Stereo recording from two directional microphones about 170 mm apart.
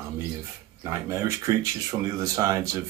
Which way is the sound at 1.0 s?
15° right (ahead or behind).